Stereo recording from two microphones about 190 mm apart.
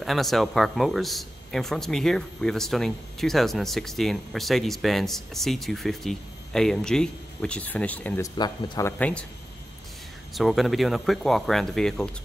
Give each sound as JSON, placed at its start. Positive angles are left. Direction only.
{"t": 0.0, "sound": "a man's voice", "side_deg": 0}
{"t": 8.4, "sound": "speech", "side_deg": 20}
{"t": 8.9, "sound": "speech", "side_deg": 5}
{"t": 10.3, "sound": "a man's voice", "side_deg": 0}